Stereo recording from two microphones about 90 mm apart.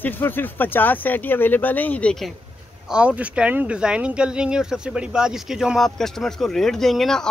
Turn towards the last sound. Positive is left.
turn(degrees=5)  # may be behind; listen again after turning